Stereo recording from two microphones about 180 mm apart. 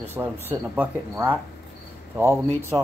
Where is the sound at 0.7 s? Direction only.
10° right (ahead or behind).